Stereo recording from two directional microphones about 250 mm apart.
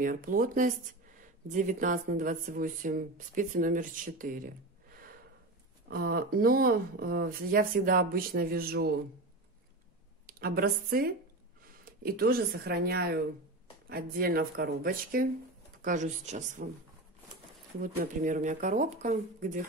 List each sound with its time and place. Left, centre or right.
0.0 s speech: right
5.9 s speech: right
10.2 s speech: right
17.9 s speech: right